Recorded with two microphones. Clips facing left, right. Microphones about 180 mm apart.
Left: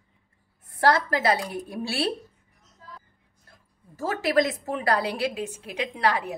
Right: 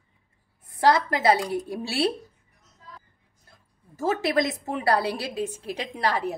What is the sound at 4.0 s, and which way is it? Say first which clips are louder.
A woman's voice: even; 25° right (ahead or behind).